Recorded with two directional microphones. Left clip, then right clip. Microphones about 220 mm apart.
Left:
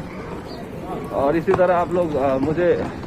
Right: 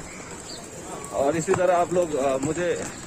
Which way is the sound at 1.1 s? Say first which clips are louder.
Left 4 dB; 15° right (ahead or behind).